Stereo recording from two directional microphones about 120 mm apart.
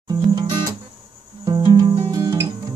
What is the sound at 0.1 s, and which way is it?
Music, 35° right (ahead or behind).